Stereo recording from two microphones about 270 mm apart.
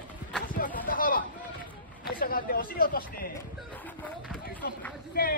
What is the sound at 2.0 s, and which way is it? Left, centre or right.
Speech, left.